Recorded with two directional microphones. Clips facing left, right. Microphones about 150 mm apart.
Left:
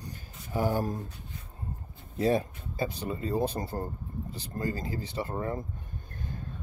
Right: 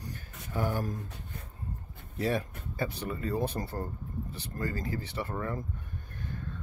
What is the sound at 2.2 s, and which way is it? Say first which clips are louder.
Speech: left 4 dB; 25° left (ahead or behind).